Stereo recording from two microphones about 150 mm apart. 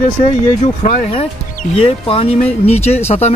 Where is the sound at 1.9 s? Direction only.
40° left (ahead or behind).